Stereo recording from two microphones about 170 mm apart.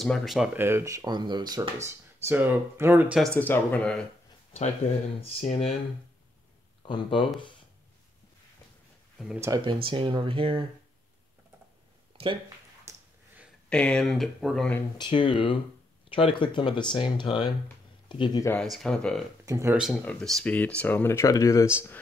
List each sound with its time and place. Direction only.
0.0 s speech: centre (ahead or behind); by 1.7 s 25° right (ahead or behind)
1.9 s speech: 10° right (ahead or behind)
3.2 s speech: 10° left (ahead or behind)
5.2 s speech: 35° left (ahead or behind)
6.9 s speech: 30° left (ahead or behind)
9.4 s speech: 20° right (ahead or behind)
12.1 s a sound: 30° right (ahead or behind)
12.9 s a sound: 15° right (ahead or behind)
13.7 s speech: 5° left (ahead or behind)
15.0 s speech: 30° left (ahead or behind)
18.4 s speech: 10° left (ahead or behind)
19.4 s speech: 15° right (ahead or behind)
19.8 s speech: 5° left (ahead or behind)